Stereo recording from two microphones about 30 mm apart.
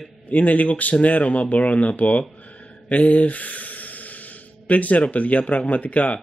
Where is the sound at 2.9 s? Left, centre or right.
Left.